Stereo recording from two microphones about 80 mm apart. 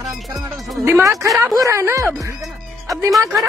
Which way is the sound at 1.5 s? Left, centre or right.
Right.